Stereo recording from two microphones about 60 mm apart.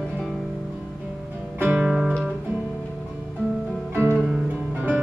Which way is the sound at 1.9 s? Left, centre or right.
Centre.